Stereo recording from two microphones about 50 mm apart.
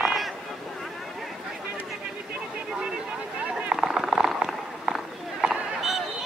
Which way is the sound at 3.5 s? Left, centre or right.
Centre.